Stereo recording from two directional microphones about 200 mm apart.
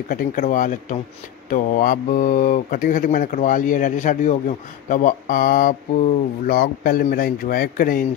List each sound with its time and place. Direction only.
0.1 s speech: 45° left (ahead or behind)